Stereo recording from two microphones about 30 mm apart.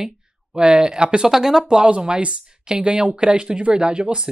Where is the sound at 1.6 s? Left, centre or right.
Right.